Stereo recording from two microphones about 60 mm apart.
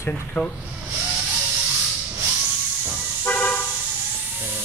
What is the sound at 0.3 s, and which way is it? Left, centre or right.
Speech, left.